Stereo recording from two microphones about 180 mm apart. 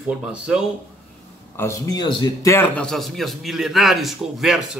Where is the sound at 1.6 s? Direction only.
20° left (ahead or behind).